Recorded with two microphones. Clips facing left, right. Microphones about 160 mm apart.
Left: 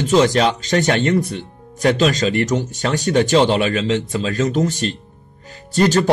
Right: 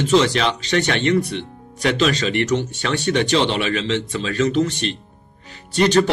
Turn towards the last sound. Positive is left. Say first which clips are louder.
# left 5 dB
turn(degrees=45)  # may be behind; listen again after turning